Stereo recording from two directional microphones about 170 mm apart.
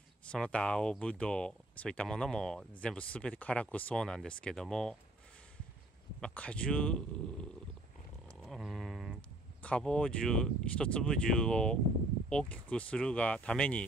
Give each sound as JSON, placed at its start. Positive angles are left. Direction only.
{"t": 0.3, "sound": "speech", "side_deg": 5}
{"t": 6.2, "sound": "speech", "side_deg": 5}
{"t": 8.4, "sound": "a sound", "side_deg": 0}
{"t": 9.6, "sound": "speech", "side_deg": 5}